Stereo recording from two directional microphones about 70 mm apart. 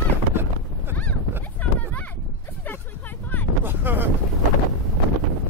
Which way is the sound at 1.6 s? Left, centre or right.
Left.